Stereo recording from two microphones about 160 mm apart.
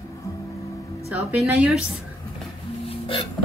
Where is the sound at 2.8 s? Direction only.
35° left (ahead or behind).